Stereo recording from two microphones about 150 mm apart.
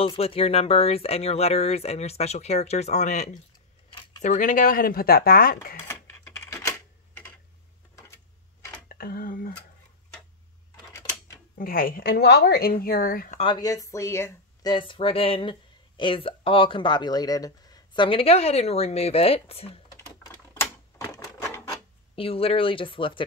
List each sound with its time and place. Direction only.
0.0 s speech: 40° left (ahead or behind); by 5.8 s 80° left
5.9 s typewriter: 15° left (ahead or behind)
8.8 s speech: 80° left
10.9 s a sound: 20° left (ahead or behind)
11.5 s a woman's voice: 70° left (ahead or behind)
13.4 s speech: 30° left (ahead or behind)
20.2 s typewriter: 20° left (ahead or behind)
22.1 s speech: 40° left (ahead or behind)